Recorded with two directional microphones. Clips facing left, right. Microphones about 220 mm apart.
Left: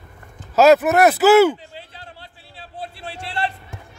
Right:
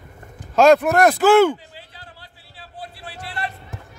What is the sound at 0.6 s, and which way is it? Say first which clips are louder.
Speech: left 1 dB; 5° left (ahead or behind).